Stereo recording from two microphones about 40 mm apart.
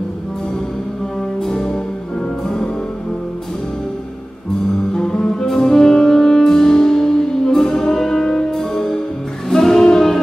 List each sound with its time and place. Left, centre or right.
1.4 s music: centre
4.9 s music: centre